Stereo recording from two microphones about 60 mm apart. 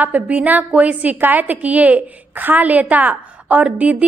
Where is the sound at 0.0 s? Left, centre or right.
Right.